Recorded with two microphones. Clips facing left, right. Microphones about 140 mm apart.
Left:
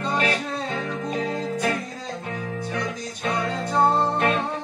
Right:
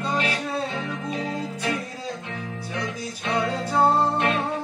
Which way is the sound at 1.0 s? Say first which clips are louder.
Left 4 dB; 50° left (ahead or behind).